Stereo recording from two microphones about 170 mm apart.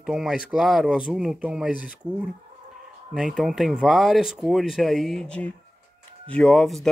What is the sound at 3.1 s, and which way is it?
Speech, 5° right (ahead or behind).